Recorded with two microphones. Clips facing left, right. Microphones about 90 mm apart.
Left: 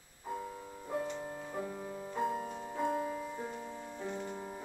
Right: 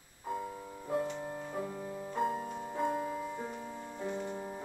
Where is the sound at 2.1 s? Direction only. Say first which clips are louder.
Right 1 dB; centre (ahead or behind).